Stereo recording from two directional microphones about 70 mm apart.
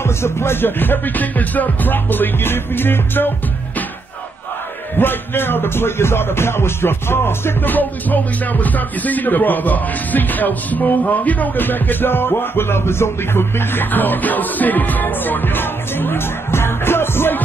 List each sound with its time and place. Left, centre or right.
0.0 s music: left
4.9 s music: left